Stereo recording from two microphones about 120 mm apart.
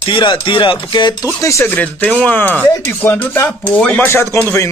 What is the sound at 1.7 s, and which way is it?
Speech, 15° left (ahead or behind).